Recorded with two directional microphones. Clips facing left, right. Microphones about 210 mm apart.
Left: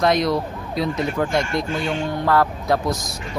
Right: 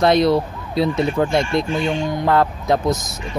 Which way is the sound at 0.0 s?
30° right (ahead or behind).